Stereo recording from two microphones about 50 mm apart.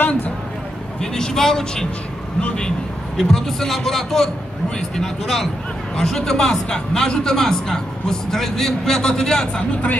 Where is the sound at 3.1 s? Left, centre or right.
Centre.